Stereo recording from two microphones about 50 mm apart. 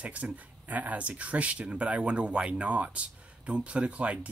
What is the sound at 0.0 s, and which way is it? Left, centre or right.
Speech, right.